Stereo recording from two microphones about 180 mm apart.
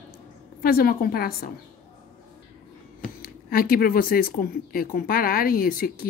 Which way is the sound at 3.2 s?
55° left (ahead or behind).